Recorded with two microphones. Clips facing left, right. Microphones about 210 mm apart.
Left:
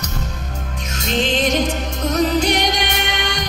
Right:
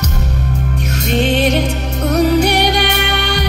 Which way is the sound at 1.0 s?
60° right (ahead or behind).